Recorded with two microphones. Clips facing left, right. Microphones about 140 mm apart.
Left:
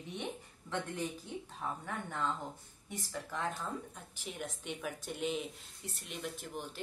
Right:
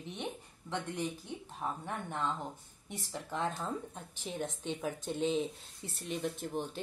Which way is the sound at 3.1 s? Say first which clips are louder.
Right 3 dB; 25° right (ahead or behind).